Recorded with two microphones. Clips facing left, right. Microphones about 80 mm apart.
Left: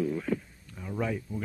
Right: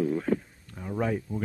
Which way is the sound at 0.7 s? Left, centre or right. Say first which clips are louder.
Right 3 dB; right.